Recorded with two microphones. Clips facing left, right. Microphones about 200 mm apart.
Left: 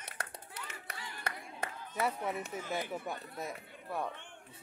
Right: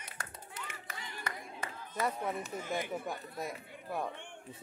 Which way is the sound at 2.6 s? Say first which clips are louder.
Right 1 dB; 20° right (ahead or behind).